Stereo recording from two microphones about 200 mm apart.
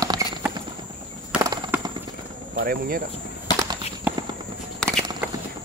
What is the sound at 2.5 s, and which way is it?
Speech, 45° right (ahead or behind).